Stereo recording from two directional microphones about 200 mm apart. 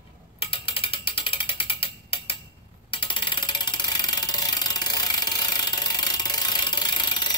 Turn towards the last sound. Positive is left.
turn(degrees=20)  # may be behind; listen again after turning